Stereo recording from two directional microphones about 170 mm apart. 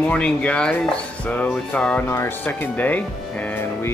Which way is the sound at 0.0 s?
5° left (ahead or behind).